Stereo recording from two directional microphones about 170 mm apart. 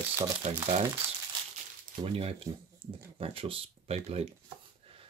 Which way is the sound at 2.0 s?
35° right (ahead or behind).